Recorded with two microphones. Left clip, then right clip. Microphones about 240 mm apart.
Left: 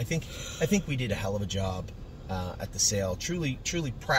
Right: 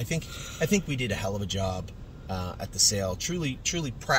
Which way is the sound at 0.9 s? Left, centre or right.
Centre.